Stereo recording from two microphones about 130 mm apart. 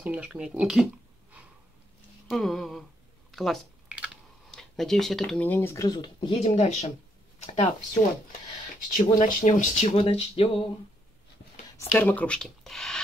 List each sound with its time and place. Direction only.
0.0 s speech: 10° right (ahead or behind)
2.2 s a sound: centre (ahead or behind)
4.5 s speech: 5° left (ahead or behind); by 5.9 s 20° left (ahead or behind)
5.9 s speech: 35° left (ahead or behind)
6.4 s speech: 55° left (ahead or behind)
8.9 s speech: 70° left (ahead or behind)
9.9 s speech: 45° left (ahead or behind)
11.8 s speech: 15° left (ahead or behind)